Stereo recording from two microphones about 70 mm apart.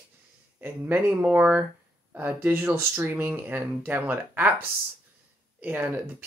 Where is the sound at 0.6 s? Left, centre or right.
Right.